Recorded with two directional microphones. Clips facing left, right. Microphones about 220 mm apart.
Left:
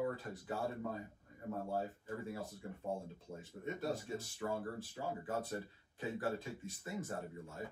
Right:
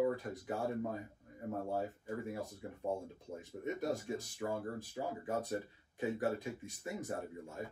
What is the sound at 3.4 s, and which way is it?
Speech, 15° right (ahead or behind).